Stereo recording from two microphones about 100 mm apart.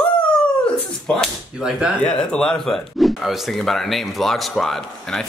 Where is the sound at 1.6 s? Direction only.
10° right (ahead or behind).